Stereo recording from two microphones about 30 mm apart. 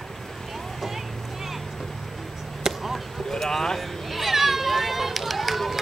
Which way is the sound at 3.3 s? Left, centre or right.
Centre.